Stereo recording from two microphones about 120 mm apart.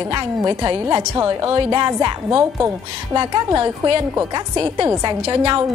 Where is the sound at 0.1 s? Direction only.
35° right (ahead or behind).